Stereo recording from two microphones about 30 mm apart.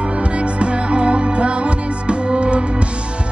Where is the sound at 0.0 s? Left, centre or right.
Right.